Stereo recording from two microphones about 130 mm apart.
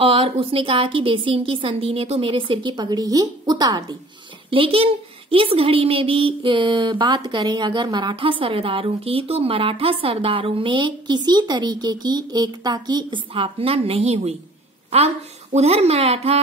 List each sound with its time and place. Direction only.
0.0 s a woman's voice: 45° right (ahead or behind)
4.5 s a woman's voice: 45° right (ahead or behind)
15.5 s speech: 55° right (ahead or behind)